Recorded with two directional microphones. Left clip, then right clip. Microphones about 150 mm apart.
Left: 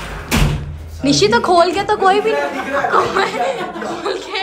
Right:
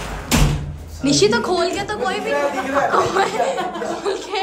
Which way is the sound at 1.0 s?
10° right (ahead or behind).